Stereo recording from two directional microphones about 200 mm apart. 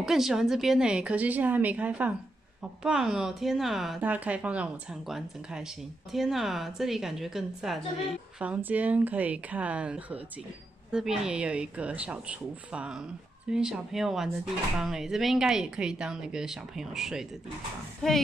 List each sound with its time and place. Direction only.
0.0 s a woman's voice: centre (ahead or behind)